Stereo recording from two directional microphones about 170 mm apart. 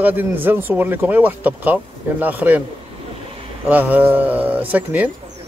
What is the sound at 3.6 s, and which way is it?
Speech, 10° right (ahead or behind).